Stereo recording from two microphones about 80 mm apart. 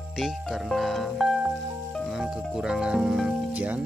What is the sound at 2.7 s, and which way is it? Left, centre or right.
Speech, centre.